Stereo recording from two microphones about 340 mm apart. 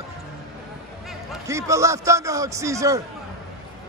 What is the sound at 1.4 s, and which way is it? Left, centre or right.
Speech, centre.